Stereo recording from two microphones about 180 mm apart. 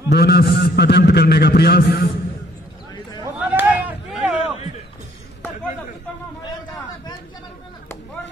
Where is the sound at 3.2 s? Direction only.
10° right (ahead or behind).